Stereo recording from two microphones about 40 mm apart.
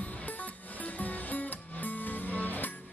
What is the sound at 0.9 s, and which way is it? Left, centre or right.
Music, left.